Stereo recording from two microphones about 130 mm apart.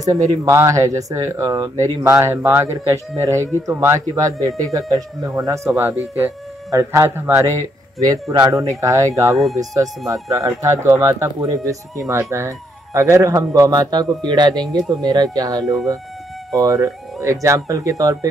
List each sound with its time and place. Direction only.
0.5 s speech: 25° right (ahead or behind)